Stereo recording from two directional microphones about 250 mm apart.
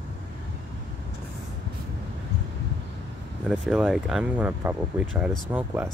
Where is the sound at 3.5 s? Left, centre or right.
Centre.